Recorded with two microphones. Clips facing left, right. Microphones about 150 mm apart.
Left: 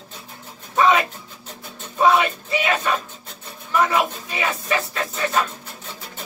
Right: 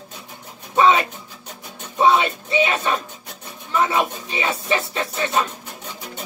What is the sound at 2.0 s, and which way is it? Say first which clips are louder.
Music: even; 25° right (ahead or behind).